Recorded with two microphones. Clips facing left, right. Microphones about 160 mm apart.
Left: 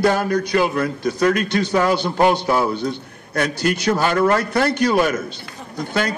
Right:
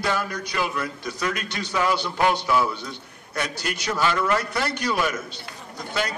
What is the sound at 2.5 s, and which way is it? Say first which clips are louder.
Speech: left 4 dB; 45° left (ahead or behind).